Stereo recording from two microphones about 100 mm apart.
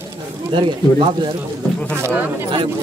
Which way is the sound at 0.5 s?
55° right (ahead or behind).